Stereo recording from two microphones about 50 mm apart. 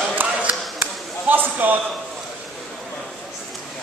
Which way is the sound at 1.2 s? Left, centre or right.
Right.